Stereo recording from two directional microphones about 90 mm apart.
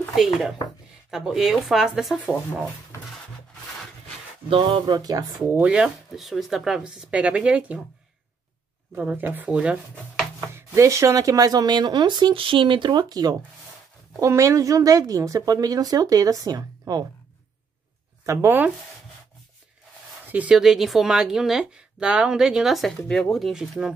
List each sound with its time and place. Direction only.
0.1 s a woman's voice: centre (ahead or behind)
4.5 s a sound: 75° right (ahead or behind)
4.8 s a woman's voice: 45° right (ahead or behind)
5.7 s speech: 5° right (ahead or behind)
8.9 s speech: 20° right (ahead or behind)
10.5 s a woman's voice: 30° right (ahead or behind); by 13.0 s 60° right (ahead or behind)
13.1 s a woman's voice: 45° right (ahead or behind)
18.2 s speech: 35° right (ahead or behind)
20.2 s speech: 15° right (ahead or behind)
20.5 s a woman's voice: 5° right (ahead or behind)